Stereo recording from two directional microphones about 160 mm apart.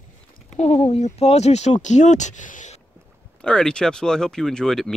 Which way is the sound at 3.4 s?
5° left (ahead or behind).